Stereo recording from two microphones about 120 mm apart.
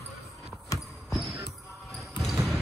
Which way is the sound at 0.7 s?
25° left (ahead or behind).